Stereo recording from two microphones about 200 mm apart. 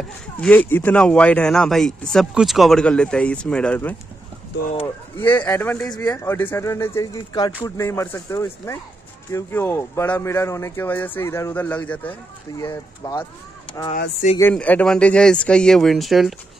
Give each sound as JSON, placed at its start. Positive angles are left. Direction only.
{"t": 0.4, "sound": "speech", "side_deg": 5}
{"t": 5.2, "sound": "speech", "side_deg": 10}
{"t": 12.6, "sound": "speech", "side_deg": 20}
{"t": 14.4, "sound": "speech", "side_deg": 5}